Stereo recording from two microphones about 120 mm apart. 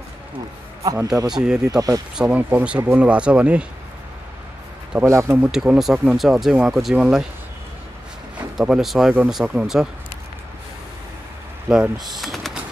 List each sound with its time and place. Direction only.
0.8 s speech: 30° right (ahead or behind)
1.3 s speech: 5° right (ahead or behind)
1.6 s speech: 30° right (ahead or behind)
2.1 s speech: 15° right (ahead or behind)
4.9 s speech: 25° right (ahead or behind)
5.4 s speech: 5° right (ahead or behind)
8.5 s speech: 5° right (ahead or behind)
11.7 s speech: 5° right (ahead or behind)